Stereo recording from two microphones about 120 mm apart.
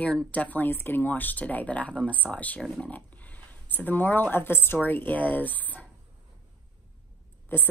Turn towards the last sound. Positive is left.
turn(degrees=15)  # may be behind; listen again after turning